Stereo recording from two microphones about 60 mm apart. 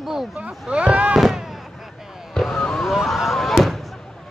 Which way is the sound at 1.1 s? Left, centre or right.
Centre.